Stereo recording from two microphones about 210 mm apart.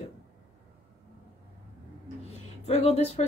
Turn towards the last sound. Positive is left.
turn(degrees=30)  # may be behind; listen again after turning